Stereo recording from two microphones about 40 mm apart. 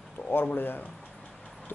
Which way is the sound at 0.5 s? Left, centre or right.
Left.